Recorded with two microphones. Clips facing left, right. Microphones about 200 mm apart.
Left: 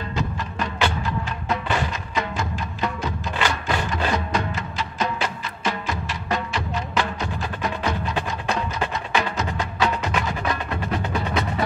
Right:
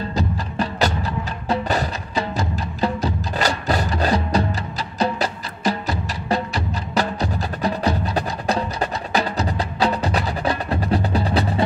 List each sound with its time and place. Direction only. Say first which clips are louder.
0.1 s music: right 3 dB; 35° right (ahead or behind)